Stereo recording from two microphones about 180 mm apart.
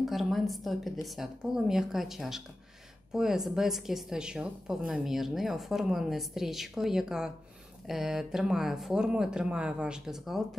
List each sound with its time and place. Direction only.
0.0 s a woman's voice: centre (ahead or behind)